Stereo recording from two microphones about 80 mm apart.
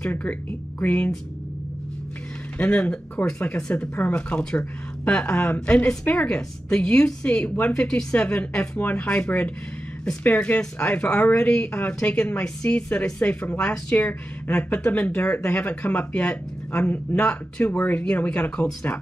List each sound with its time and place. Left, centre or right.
0.0 s speech: centre
2.6 s speech: centre